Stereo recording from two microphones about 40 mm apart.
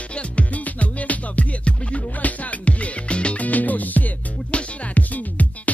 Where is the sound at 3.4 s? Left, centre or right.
Left.